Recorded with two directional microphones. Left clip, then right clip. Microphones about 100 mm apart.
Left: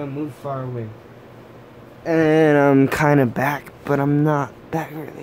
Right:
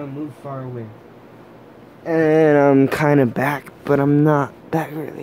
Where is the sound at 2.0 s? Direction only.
5° left (ahead or behind).